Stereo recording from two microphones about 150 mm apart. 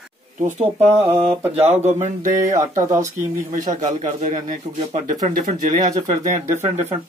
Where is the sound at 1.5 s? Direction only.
50° right (ahead or behind).